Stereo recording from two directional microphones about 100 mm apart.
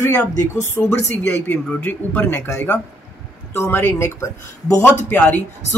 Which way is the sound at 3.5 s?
25° left (ahead or behind).